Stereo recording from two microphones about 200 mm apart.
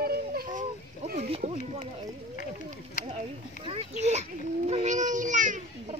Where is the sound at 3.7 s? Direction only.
35° right (ahead or behind).